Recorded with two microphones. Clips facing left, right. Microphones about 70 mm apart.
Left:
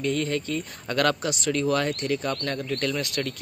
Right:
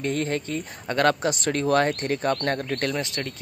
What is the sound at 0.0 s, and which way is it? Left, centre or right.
Speech, right.